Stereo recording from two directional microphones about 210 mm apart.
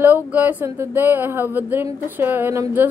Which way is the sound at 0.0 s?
10° right (ahead or behind).